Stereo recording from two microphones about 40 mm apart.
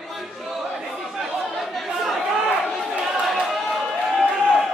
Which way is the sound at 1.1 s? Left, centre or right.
Centre.